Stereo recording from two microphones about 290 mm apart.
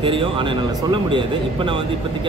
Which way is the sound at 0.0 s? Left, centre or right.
Centre.